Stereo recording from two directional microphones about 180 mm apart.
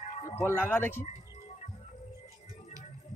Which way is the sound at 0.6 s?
10° left (ahead or behind).